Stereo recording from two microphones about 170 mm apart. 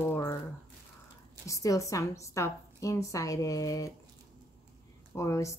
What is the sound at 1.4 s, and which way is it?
A woman's voice, 20° left (ahead or behind).